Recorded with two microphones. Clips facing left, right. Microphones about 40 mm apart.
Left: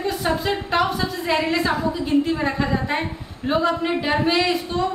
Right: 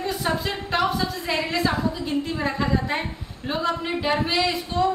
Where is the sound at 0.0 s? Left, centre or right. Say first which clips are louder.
Left 3 dB; centre.